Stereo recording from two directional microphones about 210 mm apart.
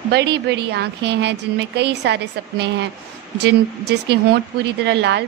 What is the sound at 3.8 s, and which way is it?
A woman's voice, 50° right (ahead or behind).